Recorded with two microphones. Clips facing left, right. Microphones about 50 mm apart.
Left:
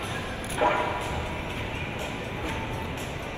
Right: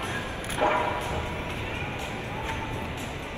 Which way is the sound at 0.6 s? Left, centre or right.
Centre.